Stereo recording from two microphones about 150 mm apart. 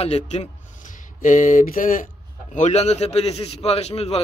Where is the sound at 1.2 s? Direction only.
60° left (ahead or behind).